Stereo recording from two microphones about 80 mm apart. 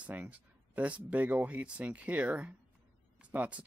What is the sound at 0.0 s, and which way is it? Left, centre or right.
Speech, centre.